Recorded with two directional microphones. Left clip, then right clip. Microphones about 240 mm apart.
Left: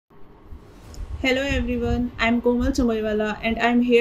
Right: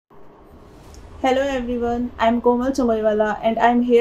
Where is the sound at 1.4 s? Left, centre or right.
Left.